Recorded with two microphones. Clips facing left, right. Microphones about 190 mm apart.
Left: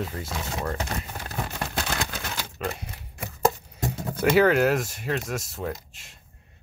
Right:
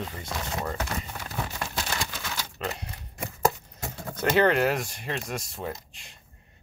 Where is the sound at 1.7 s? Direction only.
60° left (ahead or behind).